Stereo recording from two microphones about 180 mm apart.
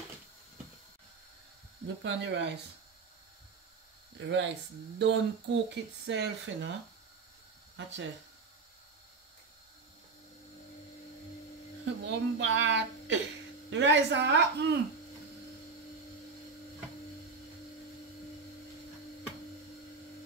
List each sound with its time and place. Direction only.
2.0 s a woman's voice: 75° right (ahead or behind)
4.2 s a woman's voice: 85° right
7.7 s speech: 90° right
11.8 s a woman's voice: 75° right (ahead or behind)